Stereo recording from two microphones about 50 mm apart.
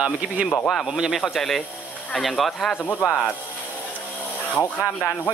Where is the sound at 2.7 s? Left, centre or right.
Left.